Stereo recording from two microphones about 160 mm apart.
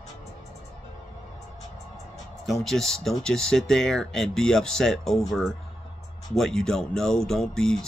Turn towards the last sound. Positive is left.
turn(degrees=5)  # may be behind; listen again after turning